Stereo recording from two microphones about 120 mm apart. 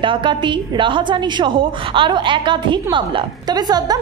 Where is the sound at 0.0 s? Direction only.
45° right (ahead or behind).